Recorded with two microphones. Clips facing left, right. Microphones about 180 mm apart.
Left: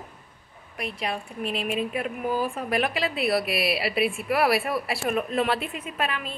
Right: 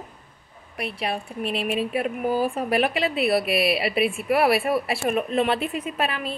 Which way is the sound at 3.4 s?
Centre (ahead or behind).